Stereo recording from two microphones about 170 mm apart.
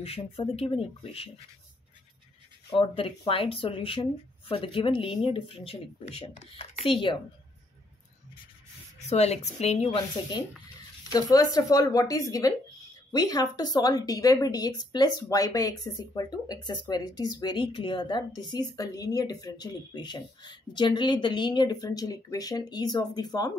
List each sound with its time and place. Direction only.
0.0 s speech: 35° left (ahead or behind)
2.7 s speech: 30° left (ahead or behind)
9.1 s speech: 40° left (ahead or behind); by 23.5 s 25° left (ahead or behind)